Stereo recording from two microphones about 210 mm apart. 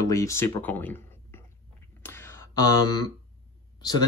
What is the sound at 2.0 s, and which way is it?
Whispering, 10° left (ahead or behind).